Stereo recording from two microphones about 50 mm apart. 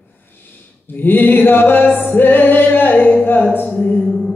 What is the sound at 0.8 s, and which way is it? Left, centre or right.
A capella, left.